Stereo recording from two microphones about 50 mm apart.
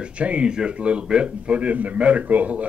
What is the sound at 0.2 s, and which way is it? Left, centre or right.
A man's voice, right.